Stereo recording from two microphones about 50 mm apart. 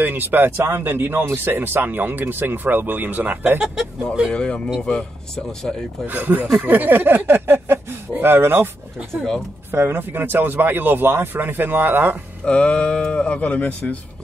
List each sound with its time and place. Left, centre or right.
0.0 s speech: right
0.7 s speech: right
3.5 s speech: centre
4.3 s speech: centre
6.0 s speech: right
9.7 s speech: right
12.4 s speech: centre